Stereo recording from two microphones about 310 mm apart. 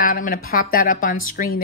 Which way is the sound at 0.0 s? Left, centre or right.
Left.